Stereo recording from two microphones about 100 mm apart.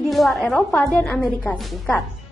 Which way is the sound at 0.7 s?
20° left (ahead or behind).